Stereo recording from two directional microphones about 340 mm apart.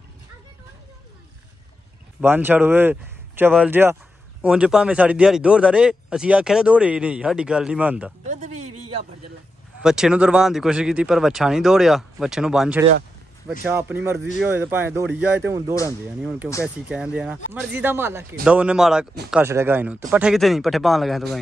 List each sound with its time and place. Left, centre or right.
2.2 s speech: centre
8.3 s a sound: right
9.8 s speech: centre
15.7 s speech: centre
16.2 s speech: centre
16.4 s speech: centre
16.9 s speech: centre